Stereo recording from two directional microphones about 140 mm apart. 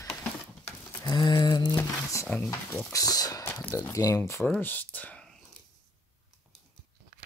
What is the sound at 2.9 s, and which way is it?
Speech, 25° left (ahead or behind).